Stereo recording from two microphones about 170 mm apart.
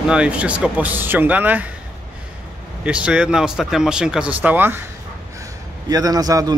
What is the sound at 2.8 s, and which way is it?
Speech, 5° right (ahead or behind).